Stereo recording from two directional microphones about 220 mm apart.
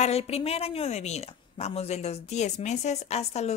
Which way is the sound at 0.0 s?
30° left (ahead or behind).